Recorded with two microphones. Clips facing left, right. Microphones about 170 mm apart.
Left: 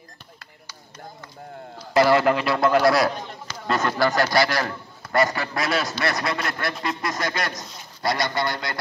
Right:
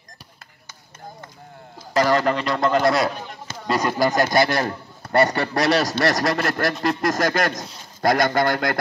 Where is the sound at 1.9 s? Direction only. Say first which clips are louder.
Left 1 dB; 10° left (ahead or behind).